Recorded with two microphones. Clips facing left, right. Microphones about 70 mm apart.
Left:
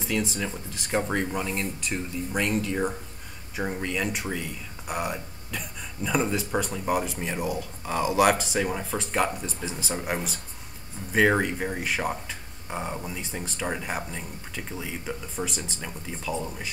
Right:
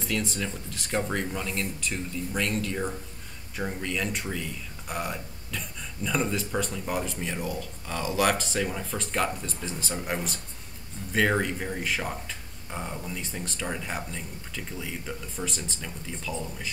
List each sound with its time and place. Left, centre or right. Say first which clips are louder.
0.0 s speech: left 2 dB; centre